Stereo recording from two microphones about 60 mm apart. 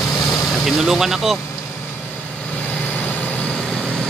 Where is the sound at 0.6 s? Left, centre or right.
Centre.